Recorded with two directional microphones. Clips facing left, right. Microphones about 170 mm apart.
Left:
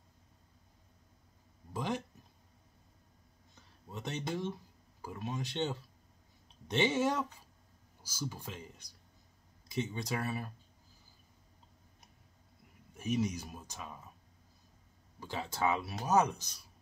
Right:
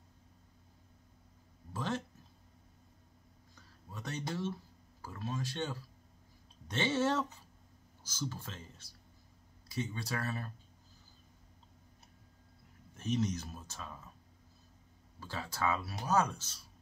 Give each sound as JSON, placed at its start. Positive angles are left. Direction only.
{"t": 1.7, "sound": "a sound", "side_deg": 15}
{"t": 3.5, "sound": "music", "side_deg": 20}
{"t": 5.0, "sound": "speech", "side_deg": 15}
{"t": 12.9, "sound": "speech", "side_deg": 10}
{"t": 15.1, "sound": "speech", "side_deg": 20}